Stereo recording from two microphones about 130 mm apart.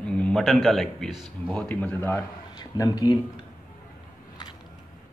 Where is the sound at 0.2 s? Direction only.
5° left (ahead or behind).